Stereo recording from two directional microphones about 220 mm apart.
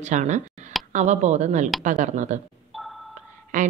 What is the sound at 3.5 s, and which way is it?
Speech, 35° right (ahead or behind).